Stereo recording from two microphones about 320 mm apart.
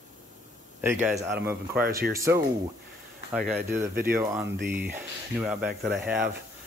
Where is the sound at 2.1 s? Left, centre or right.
Centre.